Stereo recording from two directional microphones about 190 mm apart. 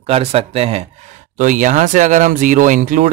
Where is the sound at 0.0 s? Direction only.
30° right (ahead or behind).